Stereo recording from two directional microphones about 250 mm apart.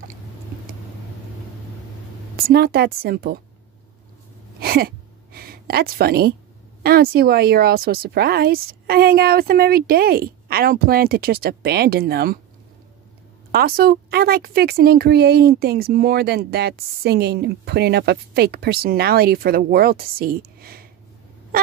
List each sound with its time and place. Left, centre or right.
2.3 s speech: right
4.6 s gasp: right
6.8 s speech: right
13.5 s speech: right